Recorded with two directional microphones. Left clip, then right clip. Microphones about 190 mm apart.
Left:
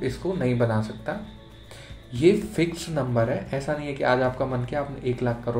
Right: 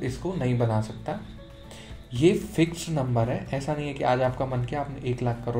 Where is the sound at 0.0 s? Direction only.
45° right (ahead or behind).